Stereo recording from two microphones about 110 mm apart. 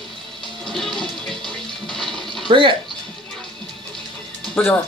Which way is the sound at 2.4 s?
50° right (ahead or behind).